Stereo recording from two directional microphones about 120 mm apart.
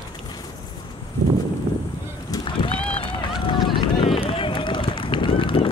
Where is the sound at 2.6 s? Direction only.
50° left (ahead or behind).